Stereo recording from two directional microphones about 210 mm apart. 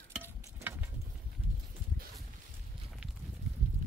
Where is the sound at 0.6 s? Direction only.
10° right (ahead or behind).